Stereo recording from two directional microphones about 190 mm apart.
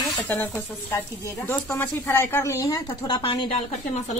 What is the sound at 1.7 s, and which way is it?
Speech, 10° left (ahead or behind).